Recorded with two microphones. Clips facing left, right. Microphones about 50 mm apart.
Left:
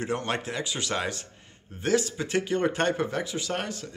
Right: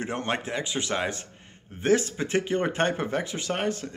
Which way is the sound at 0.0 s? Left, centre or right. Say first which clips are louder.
Even; right.